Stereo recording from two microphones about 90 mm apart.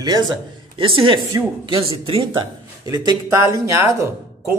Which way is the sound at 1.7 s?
85° right.